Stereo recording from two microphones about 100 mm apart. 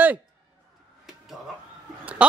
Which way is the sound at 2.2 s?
15° right (ahead or behind).